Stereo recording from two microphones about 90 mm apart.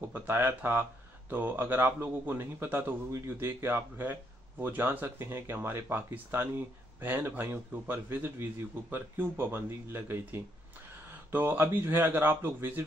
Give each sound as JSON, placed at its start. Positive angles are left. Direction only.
{"t": 0.1, "sound": "speech", "side_deg": -25}